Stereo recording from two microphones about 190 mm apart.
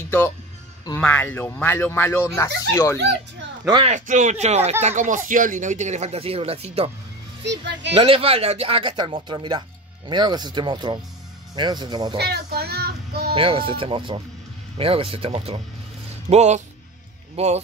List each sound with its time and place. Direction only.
0.9 s speech: 10° left (ahead or behind)
3.0 s speech: 65° right (ahead or behind)
3.7 s speech: 35° right (ahead or behind)
7.4 s speech: 70° right (ahead or behind)
7.9 s speech: 30° right (ahead or behind)
12.2 s speech: 60° right (ahead or behind)
13.3 s speech: 30° right (ahead or behind)